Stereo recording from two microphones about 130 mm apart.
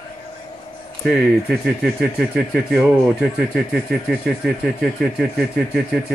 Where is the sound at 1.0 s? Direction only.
Centre (ahead or behind).